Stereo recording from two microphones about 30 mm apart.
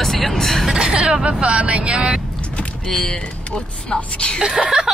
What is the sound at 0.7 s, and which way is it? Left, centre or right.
Speech, right.